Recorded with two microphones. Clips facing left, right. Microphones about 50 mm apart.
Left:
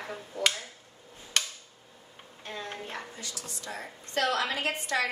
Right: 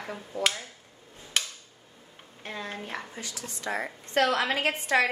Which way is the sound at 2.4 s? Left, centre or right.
Right.